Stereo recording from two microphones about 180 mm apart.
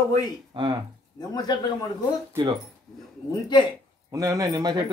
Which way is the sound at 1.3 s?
20° left (ahead or behind).